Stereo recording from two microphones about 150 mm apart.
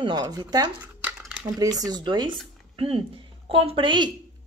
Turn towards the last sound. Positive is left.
turn(degrees=-30)  # may be behind; listen again after turning